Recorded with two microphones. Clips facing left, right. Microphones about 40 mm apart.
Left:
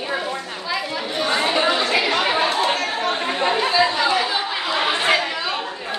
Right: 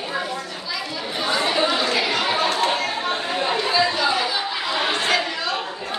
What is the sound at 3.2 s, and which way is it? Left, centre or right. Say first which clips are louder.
Chatter: left 2 dB; left.